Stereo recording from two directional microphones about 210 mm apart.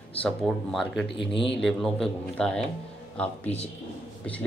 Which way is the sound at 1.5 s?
Centre (ahead or behind).